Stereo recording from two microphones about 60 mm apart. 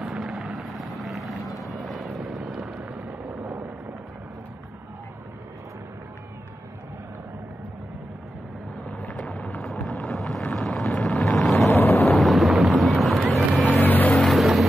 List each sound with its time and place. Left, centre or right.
0.0 s helicopter: centre
0.7 s vehicle: centre
2.8 s a sound: right
9.0 s vehicle: centre
11.5 s a sound: left
12.1 s boat: centre
13.3 s vehicle: centre
13.7 s vehicle: left
14.3 s vehicle: centre